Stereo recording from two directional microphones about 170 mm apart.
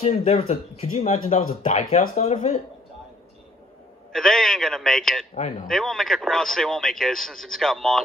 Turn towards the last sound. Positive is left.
turn(degrees=0)  # may be behind; listen again after turning